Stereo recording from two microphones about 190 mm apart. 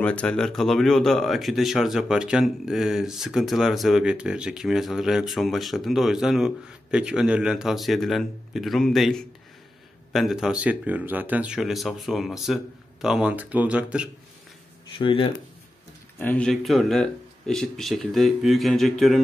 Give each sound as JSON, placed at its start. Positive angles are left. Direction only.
{"t": 0.0, "sound": "speech", "side_deg": 5}
{"t": 15.0, "sound": "speech", "side_deg": 25}
{"t": 16.2, "sound": "speech", "side_deg": 5}